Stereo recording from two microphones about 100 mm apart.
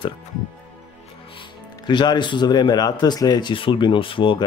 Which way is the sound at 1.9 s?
50° left (ahead or behind).